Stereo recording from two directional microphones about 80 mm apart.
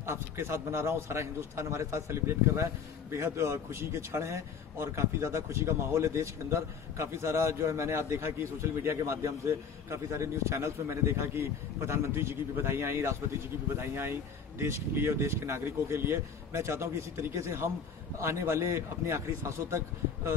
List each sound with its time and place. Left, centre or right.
0.0 s a man's voice: right